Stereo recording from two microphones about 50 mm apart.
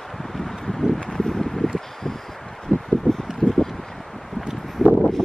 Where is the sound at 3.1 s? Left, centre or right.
Centre.